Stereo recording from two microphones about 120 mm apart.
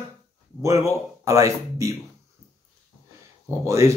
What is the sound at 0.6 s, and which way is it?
Speech, 25° right (ahead or behind).